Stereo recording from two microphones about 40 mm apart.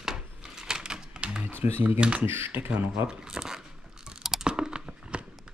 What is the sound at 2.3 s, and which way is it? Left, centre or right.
Speech, right.